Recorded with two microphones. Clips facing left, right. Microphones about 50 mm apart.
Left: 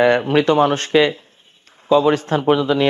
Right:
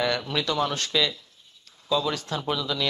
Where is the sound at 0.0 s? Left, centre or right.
Left.